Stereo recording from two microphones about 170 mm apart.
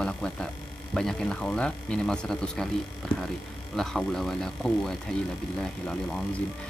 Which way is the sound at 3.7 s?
Centre (ahead or behind).